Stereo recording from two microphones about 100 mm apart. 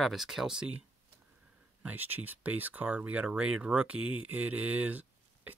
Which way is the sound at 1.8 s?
20° right (ahead or behind).